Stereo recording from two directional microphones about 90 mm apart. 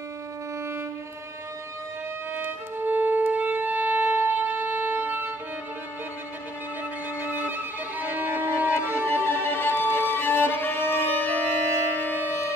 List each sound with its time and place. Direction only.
2.3 s music: 20° right (ahead or behind)
7.4 s violin: 20° right (ahead or behind)
8.9 s music: 25° left (ahead or behind)
10.1 s violin: 20° left (ahead or behind)